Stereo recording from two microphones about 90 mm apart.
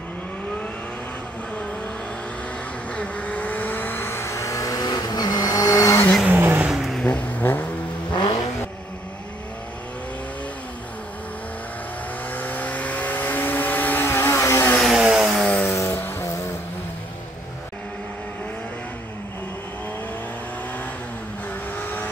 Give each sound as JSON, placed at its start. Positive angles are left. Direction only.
{"t": 2.9, "sound": "vehicle", "side_deg": 15}
{"t": 6.2, "sound": "vehicle", "side_deg": -20}
{"t": 6.7, "sound": "vehicle", "side_deg": 0}
{"t": 7.1, "sound": "vehicle", "side_deg": 15}
{"t": 8.1, "sound": "vehicle", "side_deg": 60}
{"t": 12.3, "sound": "vehicle", "side_deg": 20}
{"t": 14.8, "sound": "vehicle", "side_deg": -5}
{"t": 15.4, "sound": "vehicle", "side_deg": 10}
{"t": 15.7, "sound": "vehicle", "side_deg": 25}
{"t": 21.7, "sound": "vehicle", "side_deg": 20}